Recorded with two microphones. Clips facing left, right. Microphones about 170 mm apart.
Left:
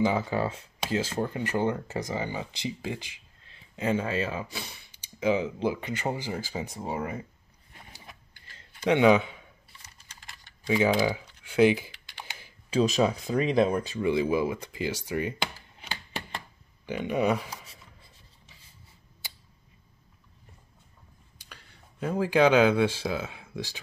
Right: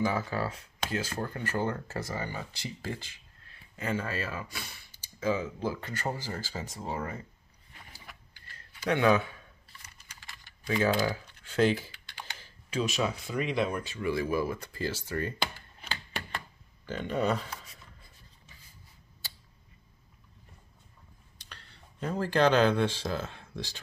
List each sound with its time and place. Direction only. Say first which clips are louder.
0.0 s speech: left 4 dB; 20° left (ahead or behind)
7.9 s tick-tock: left 2 dB; 25° left (ahead or behind)
10.7 s typing: left 3 dB; 15° left (ahead or behind)
12.6 s speech: left 6 dB; 30° left (ahead or behind)
14.0 s speech: left 4 dB; 20° left (ahead or behind)
16.8 s speech: left 3 dB; 10° left (ahead or behind)
21.4 s speech: left 1 dB; 10° left (ahead or behind)